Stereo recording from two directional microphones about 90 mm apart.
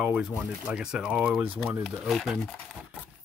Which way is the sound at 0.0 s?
15° right (ahead or behind).